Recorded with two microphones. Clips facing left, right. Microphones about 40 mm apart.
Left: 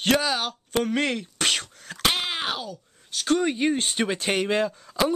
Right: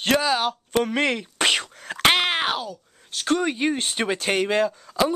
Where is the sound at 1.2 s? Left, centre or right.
Right.